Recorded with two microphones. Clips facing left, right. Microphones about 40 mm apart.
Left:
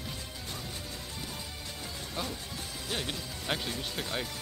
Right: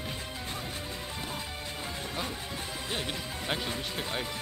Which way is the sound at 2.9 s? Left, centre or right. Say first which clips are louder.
Even; centre.